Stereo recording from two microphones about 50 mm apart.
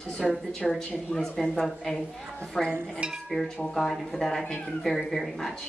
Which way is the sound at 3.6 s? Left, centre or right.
Centre.